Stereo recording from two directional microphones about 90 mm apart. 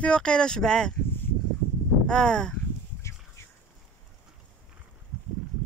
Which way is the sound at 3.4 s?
30° left (ahead or behind).